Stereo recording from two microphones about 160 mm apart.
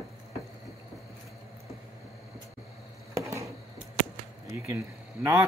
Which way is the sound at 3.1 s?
20° right (ahead or behind).